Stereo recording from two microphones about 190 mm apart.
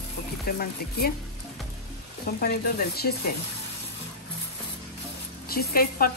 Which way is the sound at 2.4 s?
55° left (ahead or behind).